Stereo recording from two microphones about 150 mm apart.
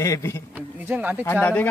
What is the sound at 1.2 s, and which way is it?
Speech, 10° left (ahead or behind).